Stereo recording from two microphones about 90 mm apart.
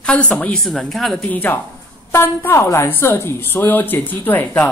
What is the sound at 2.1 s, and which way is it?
A woman's voice, 30° left (ahead or behind).